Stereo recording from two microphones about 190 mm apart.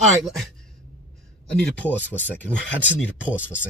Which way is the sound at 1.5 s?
5° left (ahead or behind).